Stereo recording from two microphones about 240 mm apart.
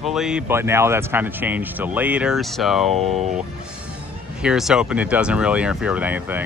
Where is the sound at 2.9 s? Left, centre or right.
Right.